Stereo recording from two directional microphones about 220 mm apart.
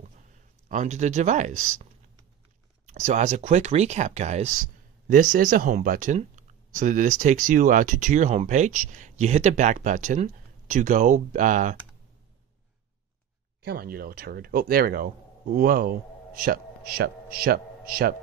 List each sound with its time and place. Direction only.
0.7 s speech: 35° right (ahead or behind)
2.9 s speech: 35° right (ahead or behind)
13.7 s a man's voice: 45° right (ahead or behind)